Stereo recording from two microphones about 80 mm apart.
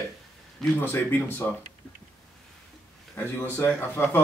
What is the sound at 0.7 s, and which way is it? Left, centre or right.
Speech, left.